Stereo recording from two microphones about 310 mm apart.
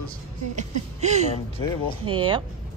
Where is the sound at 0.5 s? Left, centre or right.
Right.